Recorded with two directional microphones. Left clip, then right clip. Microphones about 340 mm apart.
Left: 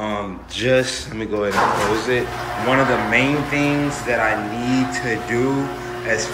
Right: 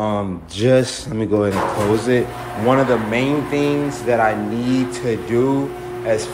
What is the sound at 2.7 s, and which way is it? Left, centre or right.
Speech, centre.